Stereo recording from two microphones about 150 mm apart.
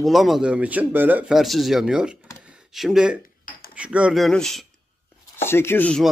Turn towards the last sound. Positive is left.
turn(degrees=10)  # may be behind; listen again after turning